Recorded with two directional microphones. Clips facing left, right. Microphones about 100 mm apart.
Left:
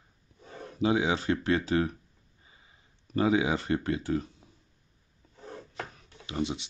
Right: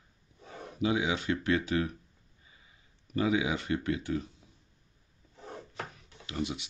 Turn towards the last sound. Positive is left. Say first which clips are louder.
# left 3 dB
turn(degrees=25)  # may be behind; listen again after turning